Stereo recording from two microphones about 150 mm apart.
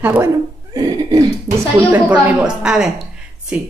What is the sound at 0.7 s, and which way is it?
Cough, 25° right (ahead or behind).